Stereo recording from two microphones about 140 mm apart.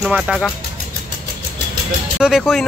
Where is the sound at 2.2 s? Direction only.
5° right (ahead or behind).